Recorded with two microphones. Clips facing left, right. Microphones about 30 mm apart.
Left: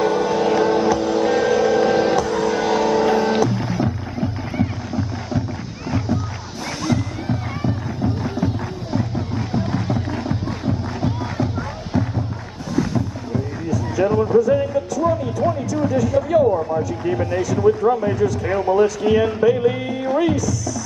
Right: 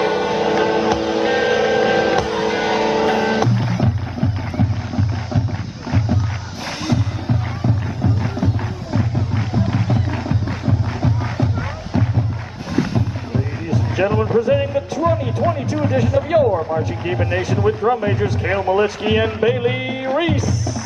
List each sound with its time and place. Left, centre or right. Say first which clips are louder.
0.0 s music: even; right
0.8 s vehicle: even; right
2.1 s music: right 1 dB; right; by 8.5 s centre
9.5 s music: right 1 dB; centre
12.9 s music: right 1 dB; right
16.4 s a sound: even; right
16.8 s a sound: even; right
17.6 s speech: left 2 dB; right
20.2 s music: left 2 dB; right